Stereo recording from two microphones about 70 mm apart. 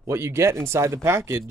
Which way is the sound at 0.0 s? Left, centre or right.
Right.